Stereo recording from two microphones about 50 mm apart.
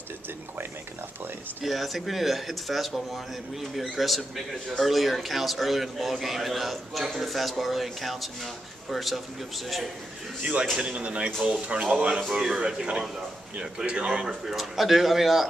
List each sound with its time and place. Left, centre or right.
1.6 s a man's voice: centre
10.4 s speech: right
12.2 s speech: centre
14.4 s a man's voice: centre